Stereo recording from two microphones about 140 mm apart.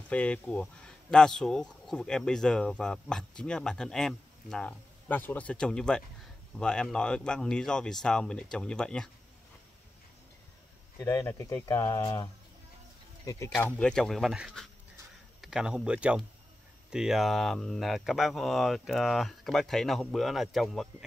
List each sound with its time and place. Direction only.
0.1 s speech: 10° left (ahead or behind)
11.0 s speech: 20° left (ahead or behind)
13.6 s speech: 10° left (ahead or behind)